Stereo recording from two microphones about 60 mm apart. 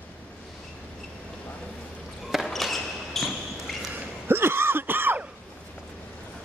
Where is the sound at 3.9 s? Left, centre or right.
Right.